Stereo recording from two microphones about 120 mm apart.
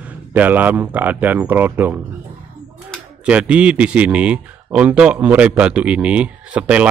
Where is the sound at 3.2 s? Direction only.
10° right (ahead or behind).